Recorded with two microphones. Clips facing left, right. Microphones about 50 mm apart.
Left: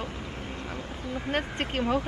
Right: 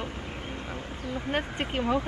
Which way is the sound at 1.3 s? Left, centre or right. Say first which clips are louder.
Even; centre.